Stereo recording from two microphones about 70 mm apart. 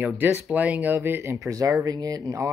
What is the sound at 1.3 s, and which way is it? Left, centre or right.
Speech, right.